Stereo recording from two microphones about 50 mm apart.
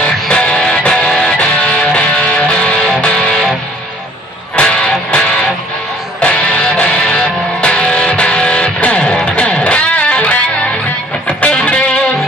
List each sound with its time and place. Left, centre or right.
0.0 s music: left
4.6 s music: centre